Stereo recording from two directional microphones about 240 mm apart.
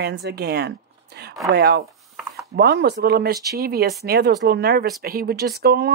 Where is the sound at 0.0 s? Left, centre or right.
Right.